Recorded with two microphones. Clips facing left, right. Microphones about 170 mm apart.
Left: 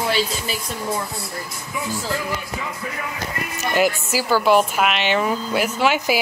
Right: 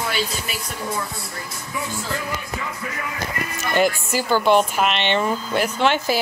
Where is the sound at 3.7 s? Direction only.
5° left (ahead or behind).